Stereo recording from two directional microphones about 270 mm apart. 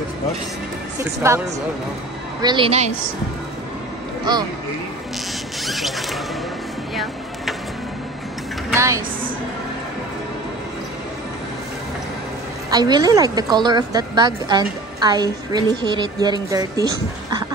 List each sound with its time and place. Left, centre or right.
0.9 s a woman's voice: centre
2.4 s a woman's voice: centre
4.2 s speech: centre
5.7 s rodents: centre
8.6 s speech: centre
12.6 s a woman's voice: centre